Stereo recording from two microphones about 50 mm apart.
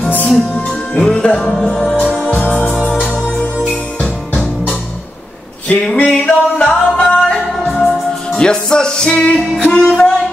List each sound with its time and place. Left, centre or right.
0.6 s music: centre
5.7 s a sound: left
6.0 s music: centre
7.6 s music: centre
8.4 s music: centre
9.8 s music: centre